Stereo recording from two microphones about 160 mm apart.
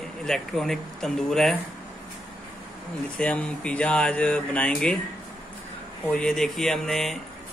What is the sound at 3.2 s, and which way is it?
Speech, 5° left (ahead or behind).